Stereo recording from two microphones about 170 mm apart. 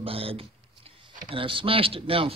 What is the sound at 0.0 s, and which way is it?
A man's voice, 35° right (ahead or behind).